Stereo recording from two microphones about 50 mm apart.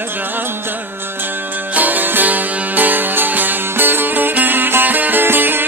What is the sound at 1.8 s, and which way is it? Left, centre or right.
Music, right.